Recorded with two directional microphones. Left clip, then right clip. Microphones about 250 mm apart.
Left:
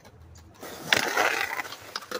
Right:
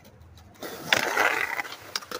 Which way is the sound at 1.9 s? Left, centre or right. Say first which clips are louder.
Right 4 dB; right.